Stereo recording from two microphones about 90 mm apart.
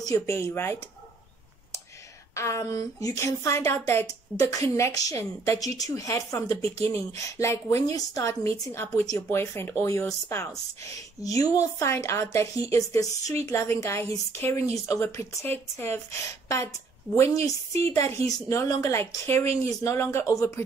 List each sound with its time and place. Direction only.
0.0 s speech: 35° left (ahead or behind)
2.3 s speech: 35° left (ahead or behind)
15.4 s speech: 25° left (ahead or behind)